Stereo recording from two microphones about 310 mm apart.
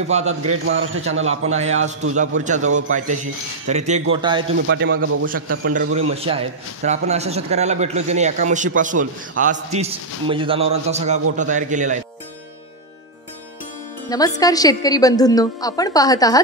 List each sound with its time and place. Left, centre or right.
0.3 s a man's voice: right
1.5 s a man's voice: right
4.6 s a man's voice: right
14.0 s a woman's voice: centre